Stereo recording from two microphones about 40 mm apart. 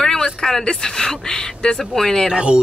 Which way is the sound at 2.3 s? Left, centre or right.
Right.